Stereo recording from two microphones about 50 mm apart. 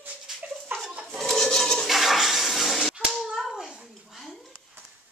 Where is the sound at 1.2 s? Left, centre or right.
Centre.